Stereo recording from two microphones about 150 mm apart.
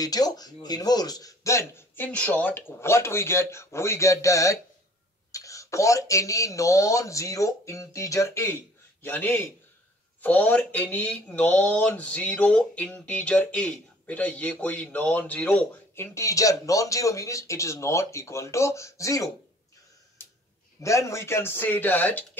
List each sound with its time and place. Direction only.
0.0 s speech: 25° left (ahead or behind)
20.8 s speech: 20° left (ahead or behind)